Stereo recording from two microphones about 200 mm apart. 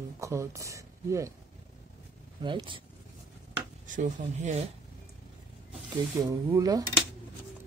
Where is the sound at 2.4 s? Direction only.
25° right (ahead or behind).